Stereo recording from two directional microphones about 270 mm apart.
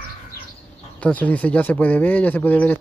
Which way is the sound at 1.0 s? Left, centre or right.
Centre.